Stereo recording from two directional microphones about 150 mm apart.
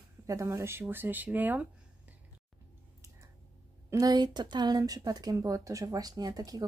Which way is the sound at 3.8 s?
25° right (ahead or behind).